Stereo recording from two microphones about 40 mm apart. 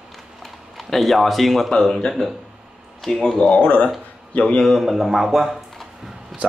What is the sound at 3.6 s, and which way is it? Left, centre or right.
Speech, left.